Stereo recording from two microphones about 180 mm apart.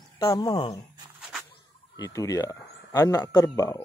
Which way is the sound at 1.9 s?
20° left (ahead or behind).